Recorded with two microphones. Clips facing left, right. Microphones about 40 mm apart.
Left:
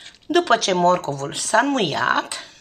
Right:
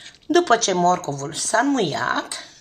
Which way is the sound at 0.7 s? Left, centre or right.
Left.